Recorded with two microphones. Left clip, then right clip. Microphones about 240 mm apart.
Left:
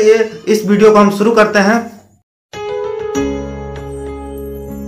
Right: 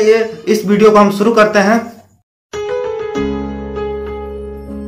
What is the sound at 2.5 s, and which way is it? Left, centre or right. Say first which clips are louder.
Music: right 2 dB; centre.